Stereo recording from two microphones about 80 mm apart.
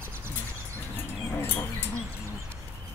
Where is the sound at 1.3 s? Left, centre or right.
Left.